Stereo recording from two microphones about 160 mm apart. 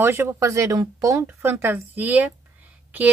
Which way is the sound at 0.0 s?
15° right (ahead or behind).